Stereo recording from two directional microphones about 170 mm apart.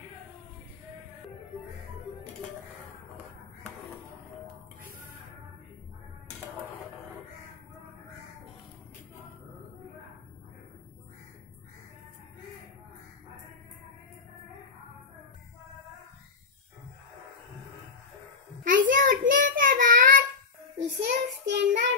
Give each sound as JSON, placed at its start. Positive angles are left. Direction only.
{"t": 18.9, "sound": "child singing", "side_deg": -50}
{"t": 20.7, "sound": "child singing", "side_deg": -90}